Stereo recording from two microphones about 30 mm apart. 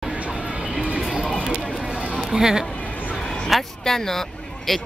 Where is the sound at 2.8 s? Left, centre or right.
Left.